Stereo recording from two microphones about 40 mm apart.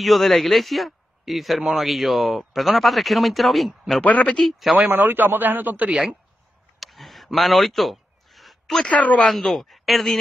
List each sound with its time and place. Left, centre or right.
0.0 s speech: centre
4.0 s speech: left
4.7 s speech: right
6.8 s a sound: centre
8.8 s speech: left
9.4 s speech: centre